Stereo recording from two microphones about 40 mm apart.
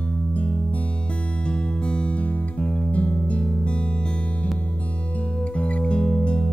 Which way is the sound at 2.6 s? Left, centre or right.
Left.